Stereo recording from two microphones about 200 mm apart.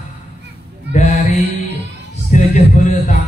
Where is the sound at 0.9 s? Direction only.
40° left (ahead or behind).